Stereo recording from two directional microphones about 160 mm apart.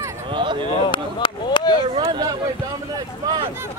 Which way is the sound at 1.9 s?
30° right (ahead or behind).